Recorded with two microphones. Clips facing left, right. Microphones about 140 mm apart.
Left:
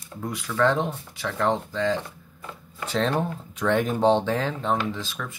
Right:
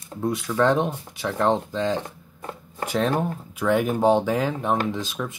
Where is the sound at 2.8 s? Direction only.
10° right (ahead or behind).